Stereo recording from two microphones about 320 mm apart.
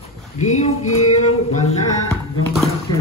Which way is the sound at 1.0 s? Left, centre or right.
Left.